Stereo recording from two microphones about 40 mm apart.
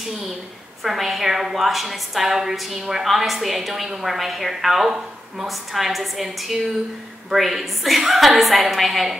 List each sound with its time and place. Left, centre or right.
0.8 s a woman's voice: centre